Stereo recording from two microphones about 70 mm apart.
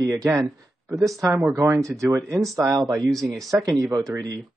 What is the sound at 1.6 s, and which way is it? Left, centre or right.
Speech, right.